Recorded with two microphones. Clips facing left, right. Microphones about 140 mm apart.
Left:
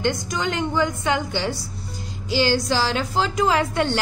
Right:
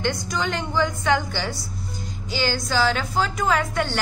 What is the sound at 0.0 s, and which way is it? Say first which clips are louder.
A woman's voice: left 2 dB; 15° left (ahead or behind).